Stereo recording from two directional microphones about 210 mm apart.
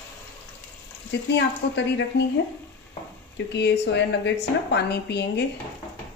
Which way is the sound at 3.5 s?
55° left (ahead or behind).